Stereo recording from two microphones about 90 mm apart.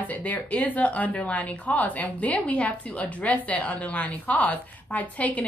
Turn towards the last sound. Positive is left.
turn(degrees=15)  # may be behind; listen again after turning